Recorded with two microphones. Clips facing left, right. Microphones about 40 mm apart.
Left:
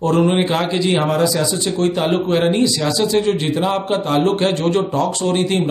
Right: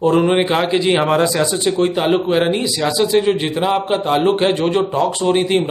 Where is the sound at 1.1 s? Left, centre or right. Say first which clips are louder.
Right 2 dB; right.